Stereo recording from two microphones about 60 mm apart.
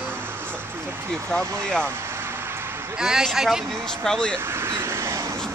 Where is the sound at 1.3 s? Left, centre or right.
Centre.